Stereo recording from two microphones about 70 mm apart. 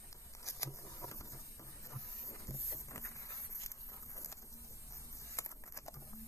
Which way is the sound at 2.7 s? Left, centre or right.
Left.